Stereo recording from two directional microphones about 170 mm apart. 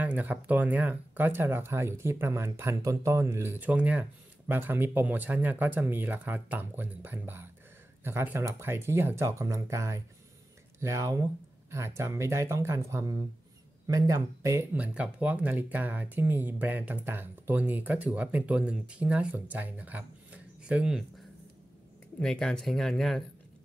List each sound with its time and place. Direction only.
0.0 s speech: 10° right (ahead or behind)
22.2 s speech: 5° left (ahead or behind)